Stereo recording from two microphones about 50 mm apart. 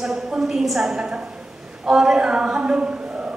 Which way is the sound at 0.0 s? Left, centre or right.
Centre.